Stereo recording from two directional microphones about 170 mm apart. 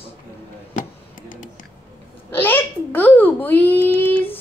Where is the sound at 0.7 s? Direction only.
50° left (ahead or behind).